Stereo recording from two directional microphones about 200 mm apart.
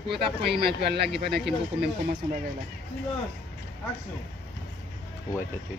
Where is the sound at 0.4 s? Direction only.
55° right (ahead or behind).